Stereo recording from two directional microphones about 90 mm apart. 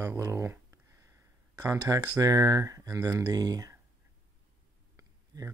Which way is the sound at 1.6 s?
40° right (ahead or behind).